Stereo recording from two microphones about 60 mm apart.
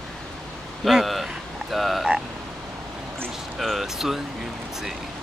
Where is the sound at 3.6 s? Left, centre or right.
Centre.